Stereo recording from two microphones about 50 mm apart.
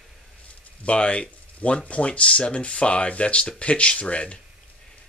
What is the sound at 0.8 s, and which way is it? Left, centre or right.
Speech, left.